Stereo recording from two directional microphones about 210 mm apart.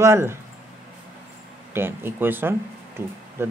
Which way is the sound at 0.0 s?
10° right (ahead or behind).